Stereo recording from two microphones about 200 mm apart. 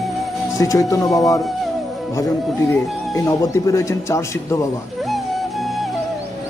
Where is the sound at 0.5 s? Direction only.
15° left (ahead or behind).